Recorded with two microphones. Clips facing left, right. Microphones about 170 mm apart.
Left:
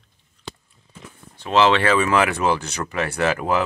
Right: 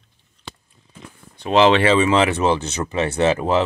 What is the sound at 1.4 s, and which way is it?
Speech, 20° right (ahead or behind).